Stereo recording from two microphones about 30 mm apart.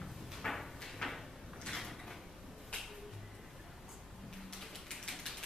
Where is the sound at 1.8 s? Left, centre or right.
Centre.